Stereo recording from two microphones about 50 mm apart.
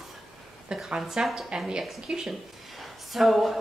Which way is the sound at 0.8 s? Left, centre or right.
Centre.